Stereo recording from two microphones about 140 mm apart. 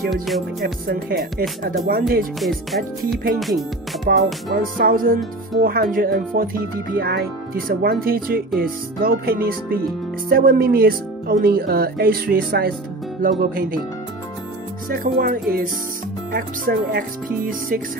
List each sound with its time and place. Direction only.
1.9 s speech: 90° right
3.3 s speech: centre (ahead or behind)
4.1 s speech: 90° right
14.9 s speech: 90° right